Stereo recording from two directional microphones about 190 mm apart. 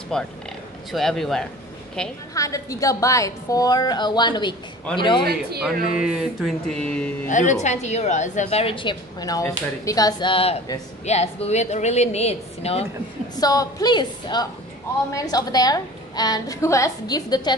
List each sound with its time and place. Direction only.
0.1 s a sound: 5° left (ahead or behind)
2.3 s a woman's voice: 15° left (ahead or behind)
5.2 s speech: 55° right (ahead or behind)
5.9 s a sound: centre (ahead or behind)
7.2 s a woman's voice: 40° left (ahead or behind)
13.4 s a woman's voice: 20° left (ahead or behind)